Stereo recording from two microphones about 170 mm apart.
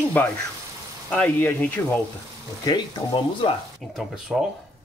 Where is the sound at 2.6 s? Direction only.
25° left (ahead or behind).